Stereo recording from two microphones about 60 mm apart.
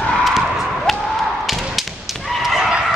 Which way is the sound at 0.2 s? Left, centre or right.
Centre.